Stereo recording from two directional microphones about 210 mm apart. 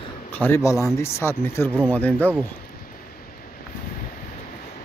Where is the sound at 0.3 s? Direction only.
10° left (ahead or behind).